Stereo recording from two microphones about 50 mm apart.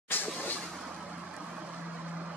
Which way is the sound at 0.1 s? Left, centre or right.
Left.